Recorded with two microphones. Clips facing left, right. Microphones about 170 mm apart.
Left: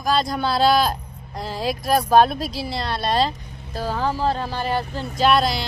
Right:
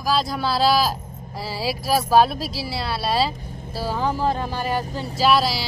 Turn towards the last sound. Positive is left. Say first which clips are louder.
# left 1 dB
turn(degrees=0)  # may be behind; listen again after turning